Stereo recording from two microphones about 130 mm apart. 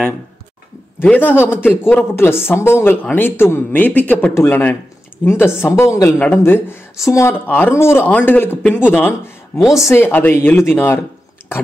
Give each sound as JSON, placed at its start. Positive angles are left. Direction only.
{"t": 0.9, "sound": "speech", "side_deg": 15}
{"t": 9.6, "sound": "a woman's voice", "side_deg": 0}
{"t": 9.9, "sound": "speech", "side_deg": 15}